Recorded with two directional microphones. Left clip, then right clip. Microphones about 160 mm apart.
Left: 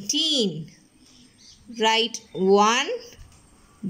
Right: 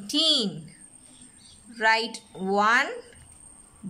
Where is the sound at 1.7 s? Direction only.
15° left (ahead or behind).